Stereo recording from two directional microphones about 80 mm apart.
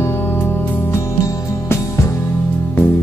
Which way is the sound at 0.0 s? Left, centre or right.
Left.